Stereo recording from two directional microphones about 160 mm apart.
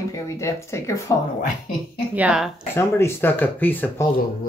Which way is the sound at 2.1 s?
5° right (ahead or behind).